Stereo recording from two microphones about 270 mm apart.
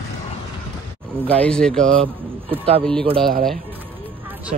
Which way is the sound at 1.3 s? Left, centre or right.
Centre.